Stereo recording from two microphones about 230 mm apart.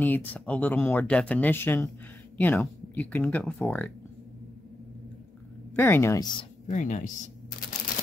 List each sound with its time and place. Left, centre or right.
0.0 s speech: centre
5.8 s speech: centre
6.7 s speech: left